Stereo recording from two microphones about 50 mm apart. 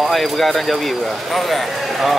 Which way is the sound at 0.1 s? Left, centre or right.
Centre.